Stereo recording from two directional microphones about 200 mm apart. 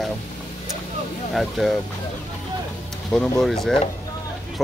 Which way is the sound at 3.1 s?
5° left (ahead or behind).